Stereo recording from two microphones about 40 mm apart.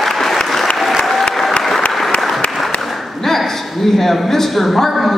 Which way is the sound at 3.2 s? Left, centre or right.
Centre.